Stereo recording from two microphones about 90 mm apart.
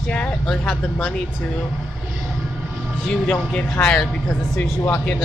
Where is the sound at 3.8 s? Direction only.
25° left (ahead or behind).